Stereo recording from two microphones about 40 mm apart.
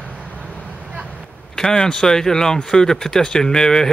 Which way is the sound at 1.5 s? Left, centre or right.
Centre.